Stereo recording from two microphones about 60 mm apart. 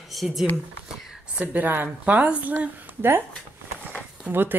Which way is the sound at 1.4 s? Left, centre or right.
Right.